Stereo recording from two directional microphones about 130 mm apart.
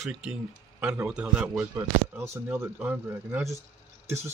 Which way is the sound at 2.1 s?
20° right (ahead or behind).